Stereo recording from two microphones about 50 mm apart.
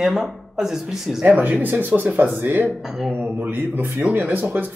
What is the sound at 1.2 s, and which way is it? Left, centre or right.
Speech, right.